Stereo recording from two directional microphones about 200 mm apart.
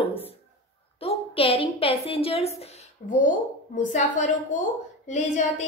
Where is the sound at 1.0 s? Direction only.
30° left (ahead or behind).